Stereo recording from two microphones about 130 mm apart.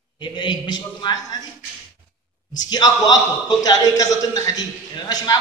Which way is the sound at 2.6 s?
30° left (ahead or behind).